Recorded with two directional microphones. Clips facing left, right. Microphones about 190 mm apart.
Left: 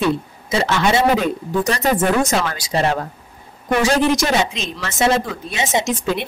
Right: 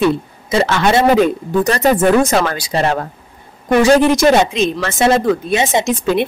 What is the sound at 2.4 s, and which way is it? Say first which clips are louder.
Speech: right 3 dB; 60° right (ahead or behind).